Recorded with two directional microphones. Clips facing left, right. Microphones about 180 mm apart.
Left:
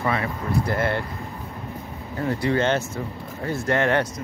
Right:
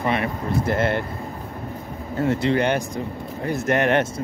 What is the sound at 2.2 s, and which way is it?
Speech, 25° right (ahead or behind).